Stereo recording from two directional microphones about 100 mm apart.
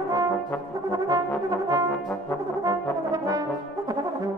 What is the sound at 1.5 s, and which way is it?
Brass instrument, 35° right (ahead or behind).